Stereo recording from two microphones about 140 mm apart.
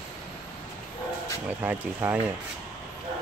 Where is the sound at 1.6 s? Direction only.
10° right (ahead or behind).